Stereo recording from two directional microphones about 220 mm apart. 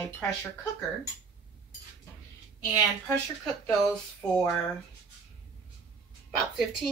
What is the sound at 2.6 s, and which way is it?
Speech, 15° left (ahead or behind).